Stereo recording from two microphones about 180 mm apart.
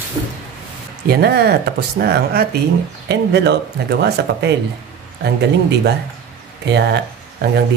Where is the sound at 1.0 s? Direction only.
60° right (ahead or behind).